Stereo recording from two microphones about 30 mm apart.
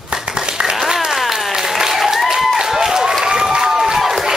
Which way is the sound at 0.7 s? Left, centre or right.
Centre.